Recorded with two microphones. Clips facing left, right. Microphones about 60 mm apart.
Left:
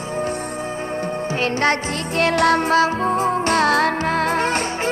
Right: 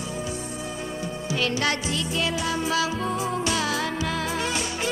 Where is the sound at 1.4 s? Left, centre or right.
Left.